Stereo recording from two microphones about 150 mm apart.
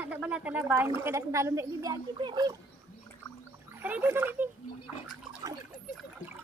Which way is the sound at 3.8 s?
15° right (ahead or behind).